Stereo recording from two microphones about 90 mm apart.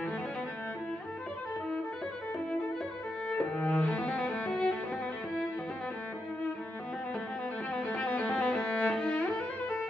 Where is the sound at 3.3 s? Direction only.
15° left (ahead or behind).